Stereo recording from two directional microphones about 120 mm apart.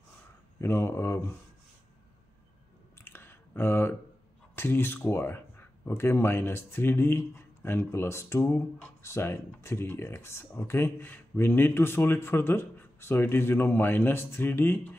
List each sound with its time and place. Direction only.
0.6 s speech: 20° left (ahead or behind)
3.0 s a sound: 20° left (ahead or behind)
4.6 s speech: 20° left (ahead or behind)